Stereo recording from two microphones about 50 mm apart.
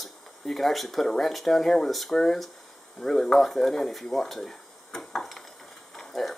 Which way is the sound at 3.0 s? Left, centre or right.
Centre.